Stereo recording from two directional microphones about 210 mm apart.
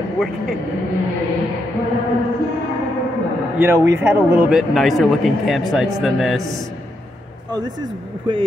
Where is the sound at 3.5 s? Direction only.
10° right (ahead or behind).